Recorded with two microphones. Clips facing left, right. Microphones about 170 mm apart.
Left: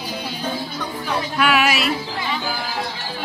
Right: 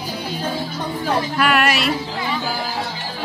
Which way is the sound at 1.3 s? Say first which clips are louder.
Left 2 dB; centre (ahead or behind).